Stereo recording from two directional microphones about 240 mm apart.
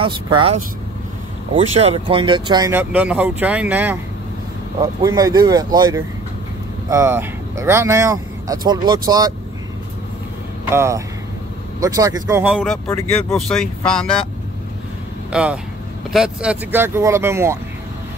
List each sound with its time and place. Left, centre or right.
0.0 s speech: right
10.7 s speech: centre
12.8 s speech: centre
15.3 s speech: centre